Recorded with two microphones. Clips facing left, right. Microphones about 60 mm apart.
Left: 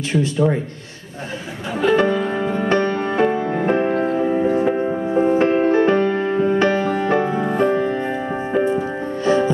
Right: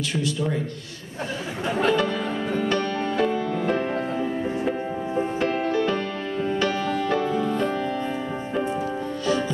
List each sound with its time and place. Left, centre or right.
0.1 s a man's voice: left
1.9 s music: left
8.6 s music: left